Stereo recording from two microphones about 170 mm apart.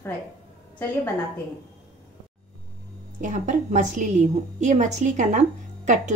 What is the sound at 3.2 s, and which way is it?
A woman's voice, 45° right (ahead or behind).